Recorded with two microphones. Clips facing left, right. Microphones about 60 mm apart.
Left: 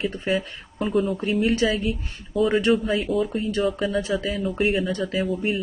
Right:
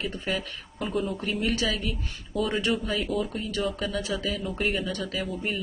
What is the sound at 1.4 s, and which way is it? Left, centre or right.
Speech, left.